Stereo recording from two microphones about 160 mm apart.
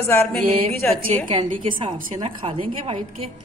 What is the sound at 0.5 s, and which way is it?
A woman's voice, 35° right (ahead or behind).